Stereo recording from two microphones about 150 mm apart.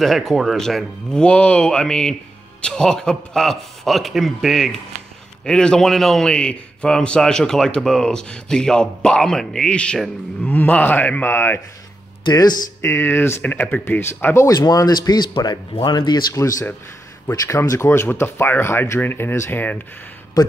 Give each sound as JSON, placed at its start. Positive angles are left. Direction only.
{"t": 0.0, "sound": "a man's voice", "side_deg": 0}
{"t": 12.3, "sound": "speech", "side_deg": 30}
{"t": 12.8, "sound": "speech", "side_deg": 15}
{"t": 20.4, "sound": "speech", "side_deg": 25}